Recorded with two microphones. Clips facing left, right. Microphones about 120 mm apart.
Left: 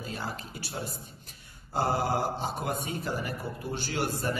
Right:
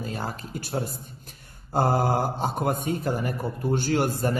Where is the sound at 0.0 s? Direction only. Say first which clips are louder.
Right 4 dB; 45° right (ahead or behind).